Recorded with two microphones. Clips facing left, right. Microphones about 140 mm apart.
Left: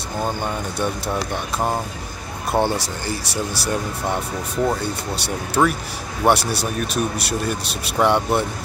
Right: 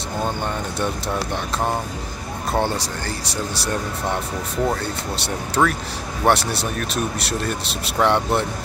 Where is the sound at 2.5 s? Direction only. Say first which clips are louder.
Left 2 dB; 10° left (ahead or behind).